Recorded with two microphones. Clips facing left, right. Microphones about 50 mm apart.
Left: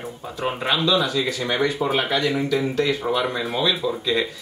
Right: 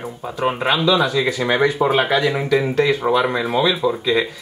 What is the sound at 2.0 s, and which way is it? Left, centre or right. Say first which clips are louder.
Speech: right 4 dB; centre.